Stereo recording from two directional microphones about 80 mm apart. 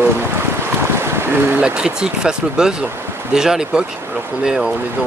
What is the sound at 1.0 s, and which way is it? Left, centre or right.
Boat, right.